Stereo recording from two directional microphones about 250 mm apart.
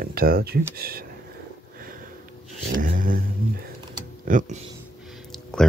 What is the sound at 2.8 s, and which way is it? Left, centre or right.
Vehicle, right.